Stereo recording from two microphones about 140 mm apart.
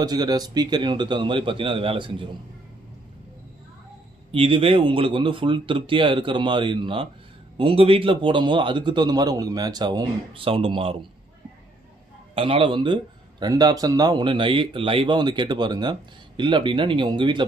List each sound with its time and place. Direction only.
0.0 s speech: 30° right (ahead or behind)
4.3 s speech: 40° right (ahead or behind)
12.4 s speech: 40° right (ahead or behind)